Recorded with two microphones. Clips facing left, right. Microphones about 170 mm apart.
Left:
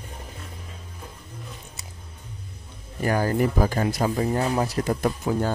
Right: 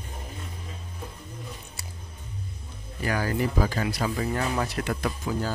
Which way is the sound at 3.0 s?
45° left (ahead or behind).